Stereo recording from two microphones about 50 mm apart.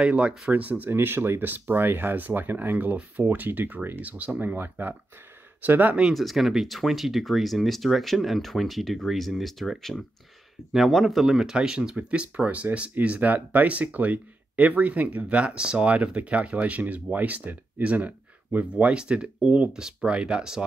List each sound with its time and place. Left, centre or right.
0.0 s speech: right
0.5 s speech: right
0.8 s speech: right
6.1 s speech: centre